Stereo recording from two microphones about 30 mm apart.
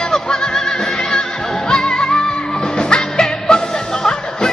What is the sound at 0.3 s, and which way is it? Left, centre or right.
Music, left.